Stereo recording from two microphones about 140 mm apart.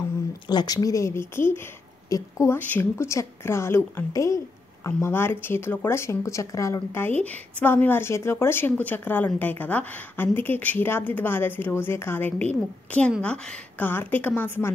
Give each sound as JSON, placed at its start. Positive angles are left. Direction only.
{"t": 0.5, "sound": "a woman's voice", "side_deg": 30}